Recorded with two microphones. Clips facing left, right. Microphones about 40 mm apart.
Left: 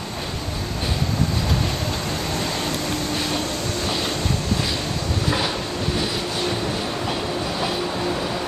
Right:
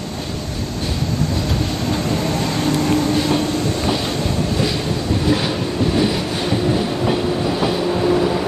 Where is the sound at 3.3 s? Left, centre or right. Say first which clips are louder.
Right 6 dB; centre.